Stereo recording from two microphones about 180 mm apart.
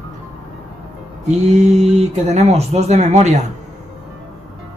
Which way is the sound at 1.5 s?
40° right (ahead or behind).